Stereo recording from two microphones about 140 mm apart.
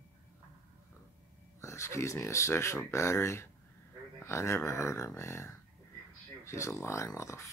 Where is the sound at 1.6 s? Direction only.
20° left (ahead or behind).